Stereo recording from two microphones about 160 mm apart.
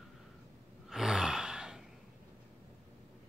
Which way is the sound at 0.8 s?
5° right (ahead or behind).